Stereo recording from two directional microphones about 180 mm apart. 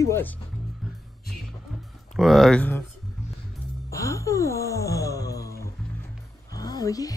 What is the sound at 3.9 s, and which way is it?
Wail, 15° left (ahead or behind).